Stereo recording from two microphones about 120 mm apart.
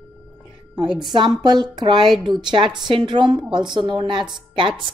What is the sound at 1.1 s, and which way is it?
A woman's voice, 35° right (ahead or behind).